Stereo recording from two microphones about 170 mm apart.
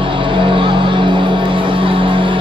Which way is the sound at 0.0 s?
30° right (ahead or behind).